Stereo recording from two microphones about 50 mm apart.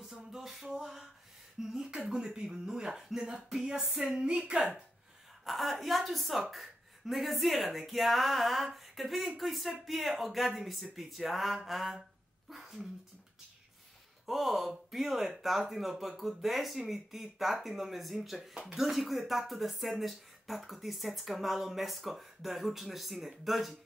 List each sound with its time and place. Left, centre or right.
0.1 s a sound: centre
1.6 s speech: centre
4.1 s speech: centre
5.4 s speech: centre
12.4 s a sound: centre
14.2 s speech: centre